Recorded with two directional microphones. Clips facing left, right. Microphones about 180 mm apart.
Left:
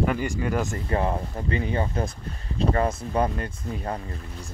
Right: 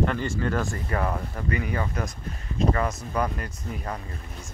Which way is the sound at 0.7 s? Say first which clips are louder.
Left 2 dB; 25° left (ahead or behind).